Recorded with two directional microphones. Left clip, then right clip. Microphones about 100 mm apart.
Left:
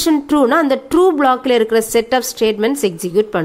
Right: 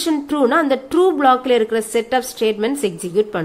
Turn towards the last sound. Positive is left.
turn(degrees=35)  # may be behind; listen again after turning